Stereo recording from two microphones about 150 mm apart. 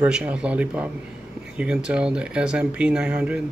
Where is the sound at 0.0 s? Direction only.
10° right (ahead or behind).